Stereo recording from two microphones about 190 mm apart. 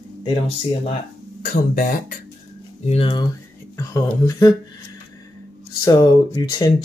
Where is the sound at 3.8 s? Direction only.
15° left (ahead or behind).